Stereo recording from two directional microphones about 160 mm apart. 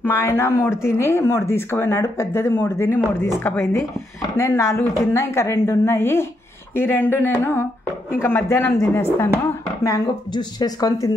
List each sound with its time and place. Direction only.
0.0 s speech: 15° left (ahead or behind)